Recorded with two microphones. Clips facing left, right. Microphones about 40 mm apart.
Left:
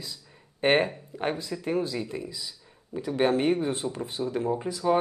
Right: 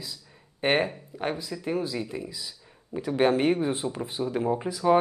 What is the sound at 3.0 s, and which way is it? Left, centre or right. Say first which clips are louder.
Speech: right 1 dB; centre.